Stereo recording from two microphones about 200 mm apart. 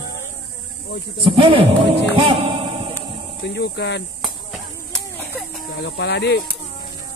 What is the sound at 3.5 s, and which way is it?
Speech, 60° left (ahead or behind).